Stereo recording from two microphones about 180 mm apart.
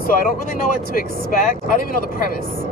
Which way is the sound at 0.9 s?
50° left (ahead or behind).